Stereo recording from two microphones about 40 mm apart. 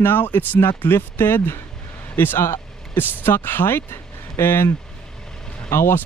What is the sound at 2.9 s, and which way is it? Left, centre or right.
Speech, left.